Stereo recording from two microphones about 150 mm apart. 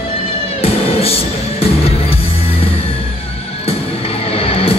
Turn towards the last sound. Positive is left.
turn(degrees=40)  # may be behind; listen again after turning